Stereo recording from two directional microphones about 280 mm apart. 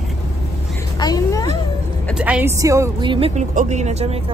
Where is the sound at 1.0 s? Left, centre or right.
Centre.